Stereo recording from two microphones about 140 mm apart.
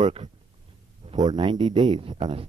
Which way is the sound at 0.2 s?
60° right (ahead or behind).